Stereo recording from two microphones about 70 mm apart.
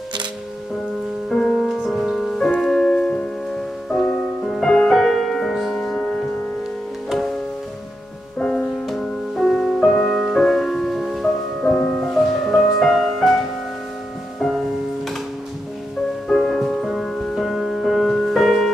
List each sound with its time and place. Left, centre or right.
1.3 s music: centre
8.4 s music: centre
11.6 s music: centre
16.3 s music: centre